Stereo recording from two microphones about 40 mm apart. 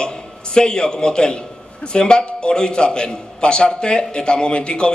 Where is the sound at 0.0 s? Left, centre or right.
Left.